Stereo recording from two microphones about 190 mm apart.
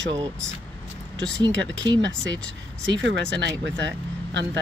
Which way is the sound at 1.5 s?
75° right (ahead or behind).